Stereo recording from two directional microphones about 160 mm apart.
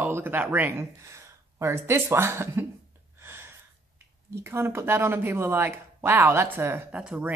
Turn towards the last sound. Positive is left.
turn(degrees=-10)  # may be behind; listen again after turning